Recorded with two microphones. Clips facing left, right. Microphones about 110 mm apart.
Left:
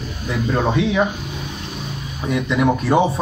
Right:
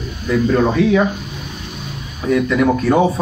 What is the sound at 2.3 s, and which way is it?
Speech, 20° left (ahead or behind).